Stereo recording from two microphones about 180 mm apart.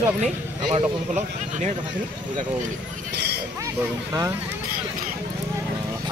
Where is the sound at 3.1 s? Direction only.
65° right (ahead or behind).